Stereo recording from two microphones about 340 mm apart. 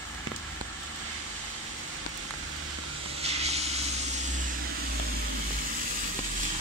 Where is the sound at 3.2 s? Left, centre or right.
Centre.